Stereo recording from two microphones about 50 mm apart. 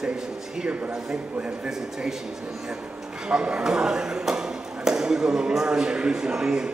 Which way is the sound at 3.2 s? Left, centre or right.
Centre.